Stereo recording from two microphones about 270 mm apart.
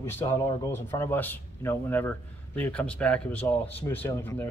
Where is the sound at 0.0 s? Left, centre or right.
Centre.